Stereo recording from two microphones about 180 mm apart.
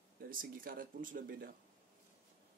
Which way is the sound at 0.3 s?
50° right (ahead or behind).